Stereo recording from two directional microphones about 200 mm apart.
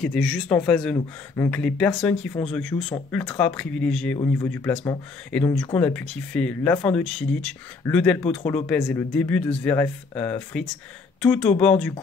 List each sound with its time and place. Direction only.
0.0 s speech: centre (ahead or behind)
0.9 s speech: 20° left (ahead or behind)
1.5 s speech: 5° left (ahead or behind)